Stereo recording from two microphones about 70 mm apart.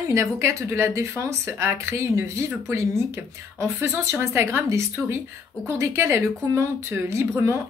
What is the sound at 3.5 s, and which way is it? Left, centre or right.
A woman's voice, right.